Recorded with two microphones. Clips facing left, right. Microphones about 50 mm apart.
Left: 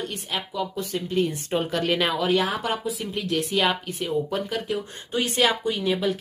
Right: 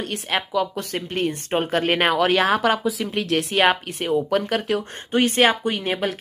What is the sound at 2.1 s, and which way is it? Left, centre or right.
Speech, right.